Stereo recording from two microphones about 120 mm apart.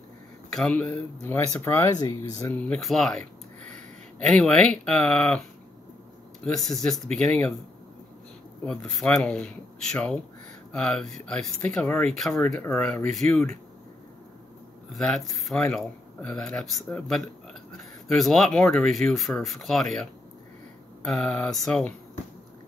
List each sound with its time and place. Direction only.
0.6 s speech: 10° left (ahead or behind); by 2.5 s 30° left (ahead or behind)
2.5 s speech: 10° left (ahead or behind)
4.2 s speech: 5° left (ahead or behind)
6.4 s speech: centre (ahead or behind)
8.6 s speech: 5° left (ahead or behind)
14.9 s speech: 5° left (ahead or behind)